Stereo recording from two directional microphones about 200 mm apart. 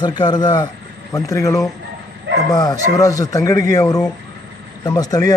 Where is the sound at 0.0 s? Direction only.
20° left (ahead or behind).